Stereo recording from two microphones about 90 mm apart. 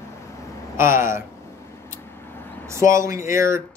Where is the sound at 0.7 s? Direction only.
30° right (ahead or behind).